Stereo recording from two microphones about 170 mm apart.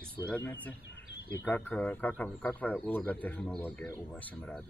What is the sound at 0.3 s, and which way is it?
Speech, 10° left (ahead or behind).